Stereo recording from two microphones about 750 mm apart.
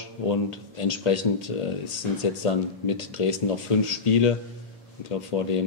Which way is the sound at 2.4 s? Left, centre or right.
Left.